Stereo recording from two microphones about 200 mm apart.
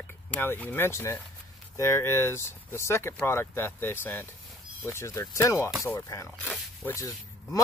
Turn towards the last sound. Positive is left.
turn(degrees=15)  # may be behind; listen again after turning